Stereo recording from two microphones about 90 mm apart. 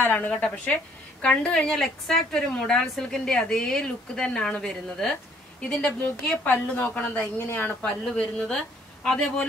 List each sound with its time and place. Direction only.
0.0 s a woman's voice: 25° left (ahead or behind)
0.3 s a woman's voice: 15° left (ahead or behind)
6.4 s a woman's voice: 20° left (ahead or behind)